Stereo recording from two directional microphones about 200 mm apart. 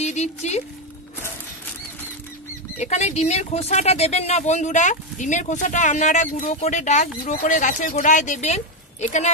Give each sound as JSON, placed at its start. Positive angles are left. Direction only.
{"t": 0.0, "sound": "speech", "side_deg": 35}
{"t": 2.8, "sound": "speech", "side_deg": 35}